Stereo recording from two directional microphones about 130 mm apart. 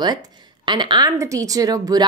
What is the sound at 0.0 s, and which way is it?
Speech, 30° right (ahead or behind).